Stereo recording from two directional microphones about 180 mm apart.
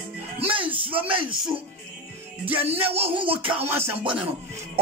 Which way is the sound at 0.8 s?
30° right (ahead or behind).